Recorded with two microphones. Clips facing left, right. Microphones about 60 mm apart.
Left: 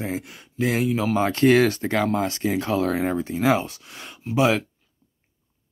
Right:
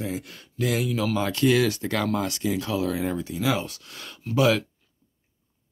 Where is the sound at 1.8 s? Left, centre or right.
Left.